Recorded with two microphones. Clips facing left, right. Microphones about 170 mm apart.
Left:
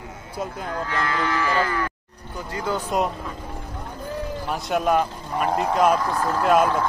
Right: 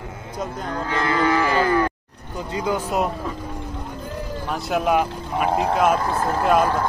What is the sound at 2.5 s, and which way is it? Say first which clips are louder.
Speech: right 3 dB; 15° right (ahead or behind).